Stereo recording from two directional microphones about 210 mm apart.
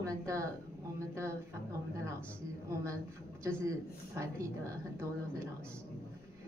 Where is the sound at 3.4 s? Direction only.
15° right (ahead or behind).